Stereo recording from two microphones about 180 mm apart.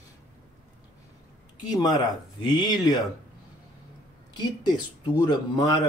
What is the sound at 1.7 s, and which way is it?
Speech, 20° left (ahead or behind).